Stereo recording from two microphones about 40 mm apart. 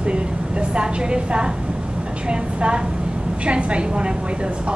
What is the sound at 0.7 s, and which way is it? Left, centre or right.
A woman's voice, right.